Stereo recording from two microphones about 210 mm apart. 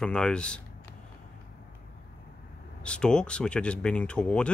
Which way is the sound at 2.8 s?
5° left (ahead or behind).